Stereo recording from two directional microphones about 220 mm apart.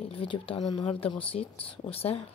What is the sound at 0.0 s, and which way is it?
Speech, 25° left (ahead or behind).